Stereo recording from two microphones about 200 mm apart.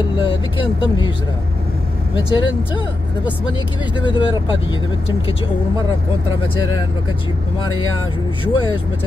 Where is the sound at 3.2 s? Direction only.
25° left (ahead or behind).